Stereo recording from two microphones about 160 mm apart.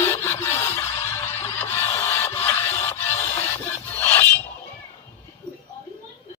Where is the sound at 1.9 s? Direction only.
15° left (ahead or behind).